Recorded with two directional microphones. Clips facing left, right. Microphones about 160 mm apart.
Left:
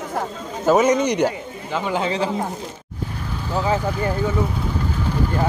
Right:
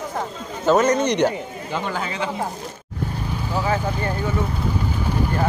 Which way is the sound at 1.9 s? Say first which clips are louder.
Left 4 dB; 30° left (ahead or behind).